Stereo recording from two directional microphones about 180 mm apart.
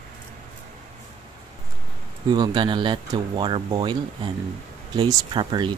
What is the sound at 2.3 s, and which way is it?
Speech, 25° right (ahead or behind).